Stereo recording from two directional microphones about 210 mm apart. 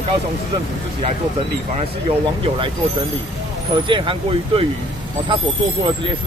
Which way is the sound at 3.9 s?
25° right (ahead or behind).